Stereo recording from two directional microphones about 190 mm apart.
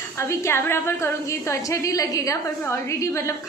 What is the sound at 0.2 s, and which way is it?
A woman's voice, 15° left (ahead or behind).